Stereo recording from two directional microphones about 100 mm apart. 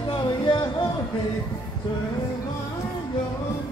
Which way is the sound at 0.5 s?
55° left (ahead or behind).